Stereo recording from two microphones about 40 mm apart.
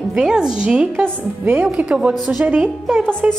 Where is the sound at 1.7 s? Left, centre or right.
Right.